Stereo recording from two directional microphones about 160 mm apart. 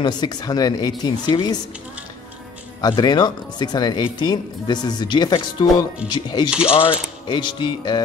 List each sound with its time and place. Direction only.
0.0 s speech: 25° left (ahead or behind)
2.8 s speech: 25° left (ahead or behind)
6.5 s speech: 5° right (ahead or behind)
6.8 s speech: 30° left (ahead or behind)